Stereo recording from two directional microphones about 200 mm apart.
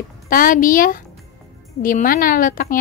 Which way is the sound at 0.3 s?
45° left (ahead or behind).